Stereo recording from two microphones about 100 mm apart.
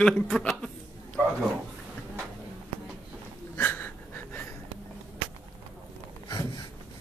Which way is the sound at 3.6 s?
20° left (ahead or behind).